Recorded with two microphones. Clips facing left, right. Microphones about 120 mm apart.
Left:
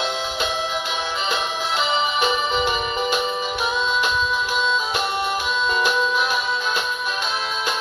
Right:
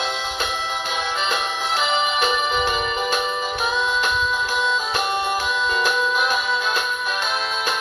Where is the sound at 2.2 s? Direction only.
20° left (ahead or behind).